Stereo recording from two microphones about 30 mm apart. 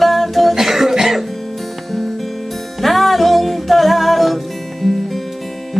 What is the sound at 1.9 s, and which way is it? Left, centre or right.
Music, centre.